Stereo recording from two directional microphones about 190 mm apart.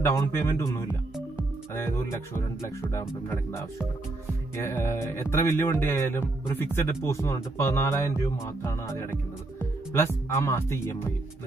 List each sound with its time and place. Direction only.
0.0 s speech: 15° left (ahead or behind)
4.6 s speech: 15° left (ahead or behind)
9.9 s speech: 15° left (ahead or behind)